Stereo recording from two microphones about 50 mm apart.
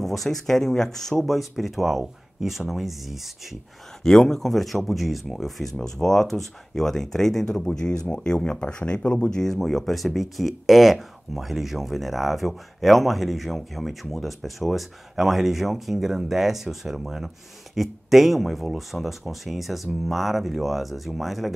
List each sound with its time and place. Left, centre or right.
0.0 s speech: centre
4.0 s speech: centre
9.4 s speech: centre